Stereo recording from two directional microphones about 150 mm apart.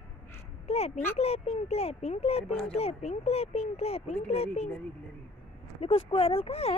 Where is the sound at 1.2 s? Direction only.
40° left (ahead or behind).